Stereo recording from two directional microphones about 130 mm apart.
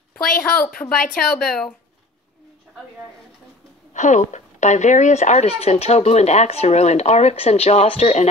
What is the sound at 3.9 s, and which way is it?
Speech, 70° left (ahead or behind).